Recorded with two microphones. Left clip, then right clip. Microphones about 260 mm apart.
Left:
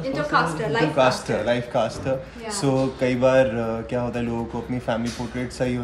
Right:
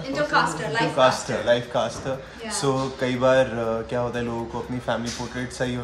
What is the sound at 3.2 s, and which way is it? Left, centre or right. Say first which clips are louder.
Speech: left 1 dB; centre.